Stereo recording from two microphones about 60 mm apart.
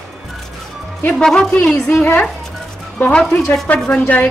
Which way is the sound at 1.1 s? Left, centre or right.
Centre.